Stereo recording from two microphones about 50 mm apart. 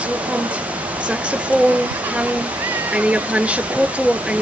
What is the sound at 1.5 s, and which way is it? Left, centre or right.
Speech, right.